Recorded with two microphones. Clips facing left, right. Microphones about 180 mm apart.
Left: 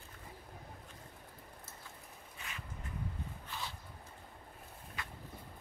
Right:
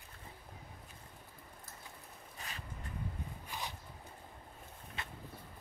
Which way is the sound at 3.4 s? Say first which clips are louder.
Right 1 dB; 15° right (ahead or behind).